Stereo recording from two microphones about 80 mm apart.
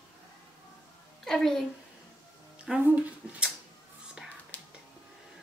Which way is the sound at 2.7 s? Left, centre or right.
Centre.